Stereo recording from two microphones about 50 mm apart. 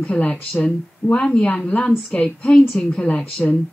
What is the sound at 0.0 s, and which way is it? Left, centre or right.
Speech, left.